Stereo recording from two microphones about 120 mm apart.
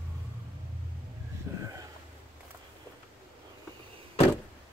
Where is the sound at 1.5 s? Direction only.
20° right (ahead or behind).